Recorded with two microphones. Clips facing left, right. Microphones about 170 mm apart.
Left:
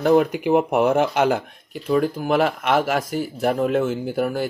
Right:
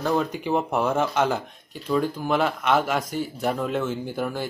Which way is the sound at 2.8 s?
50° left (ahead or behind).